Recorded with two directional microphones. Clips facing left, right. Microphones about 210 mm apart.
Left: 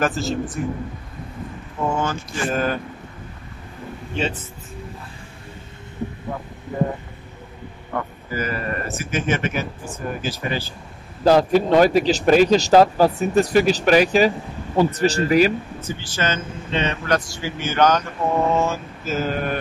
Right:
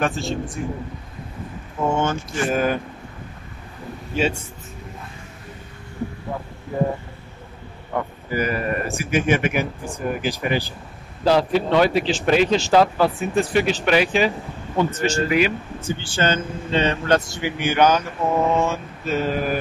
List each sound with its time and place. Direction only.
0.0 s speech: centre (ahead or behind)
1.9 s speech: 25° right (ahead or behind)
2.5 s speech: 10° right (ahead or behind)
4.1 s a man's voice: 10° right (ahead or behind)
7.9 s speech: 15° right (ahead or behind)
11.2 s speech: 45° left (ahead or behind)
15.8 s speech: 30° right (ahead or behind); by 19.6 s centre (ahead or behind)